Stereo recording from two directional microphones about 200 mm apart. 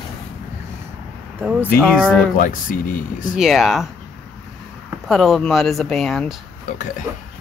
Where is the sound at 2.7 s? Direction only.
45° left (ahead or behind).